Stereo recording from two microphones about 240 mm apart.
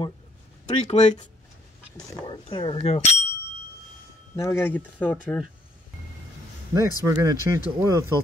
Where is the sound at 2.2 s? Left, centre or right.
Centre.